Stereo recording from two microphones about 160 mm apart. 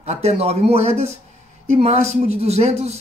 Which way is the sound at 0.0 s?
45° right (ahead or behind).